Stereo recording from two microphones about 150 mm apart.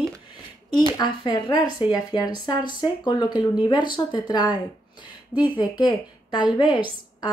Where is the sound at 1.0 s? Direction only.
30° left (ahead or behind).